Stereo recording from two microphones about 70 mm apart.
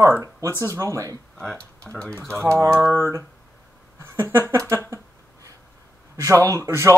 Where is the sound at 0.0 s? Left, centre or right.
Right.